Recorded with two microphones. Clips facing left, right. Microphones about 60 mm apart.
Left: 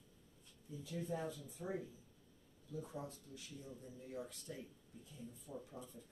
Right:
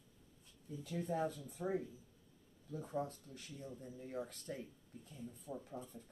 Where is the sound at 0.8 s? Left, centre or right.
Right.